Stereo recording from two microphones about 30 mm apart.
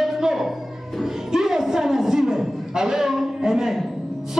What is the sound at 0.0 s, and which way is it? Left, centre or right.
Music, centre.